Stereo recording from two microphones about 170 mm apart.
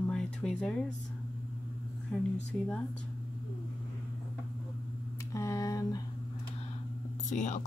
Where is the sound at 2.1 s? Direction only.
5° left (ahead or behind).